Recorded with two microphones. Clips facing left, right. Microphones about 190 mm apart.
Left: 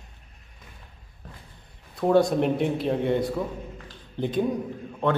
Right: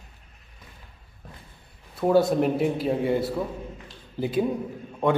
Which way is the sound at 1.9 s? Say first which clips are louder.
Even; 5° right (ahead or behind).